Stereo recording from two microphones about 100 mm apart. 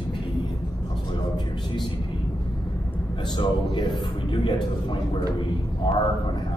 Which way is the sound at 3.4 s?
55° left (ahead or behind).